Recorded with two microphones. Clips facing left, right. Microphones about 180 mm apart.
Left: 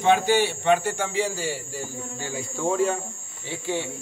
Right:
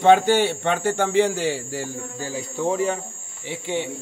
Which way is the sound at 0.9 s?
65° right (ahead or behind).